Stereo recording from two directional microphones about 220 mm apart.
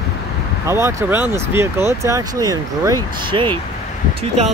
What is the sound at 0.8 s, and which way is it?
Speech, 10° right (ahead or behind).